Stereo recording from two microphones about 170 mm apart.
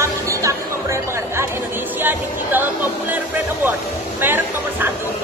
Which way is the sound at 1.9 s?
10° right (ahead or behind).